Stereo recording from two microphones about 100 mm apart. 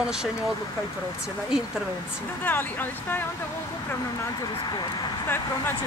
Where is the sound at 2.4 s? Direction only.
20° left (ahead or behind).